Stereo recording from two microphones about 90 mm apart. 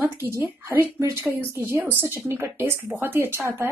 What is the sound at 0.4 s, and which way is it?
Speech, 25° right (ahead or behind).